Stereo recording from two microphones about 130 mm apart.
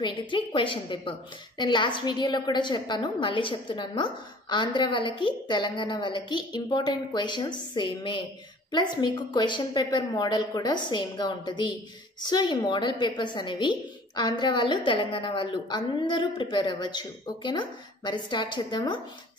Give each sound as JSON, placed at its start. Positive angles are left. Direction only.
{"t": 0.0, "sound": "a woman's voice", "side_deg": 40}